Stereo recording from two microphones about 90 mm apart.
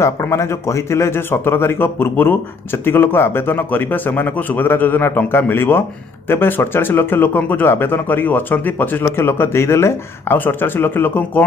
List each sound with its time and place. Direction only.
0.0 s speech: 35° left (ahead or behind)